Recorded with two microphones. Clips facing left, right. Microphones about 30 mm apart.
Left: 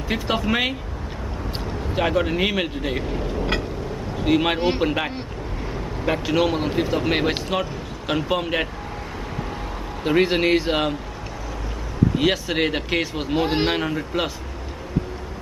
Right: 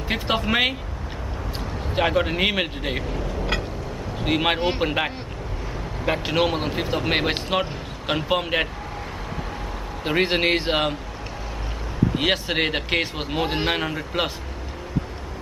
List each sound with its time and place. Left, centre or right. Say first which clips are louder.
0.1 s speech: even; centre
2.0 s speech: even; centre
3.0 s a sound: left 2 dB; centre
4.2 s speech: left 2 dB; centre
4.6 s speech: left 2 dB; centre
4.8 s speech: left 1 dB; centre
6.2 s speech: left 2 dB; centre
10.0 s speech: left 2 dB; centre
12.2 s speech: even; centre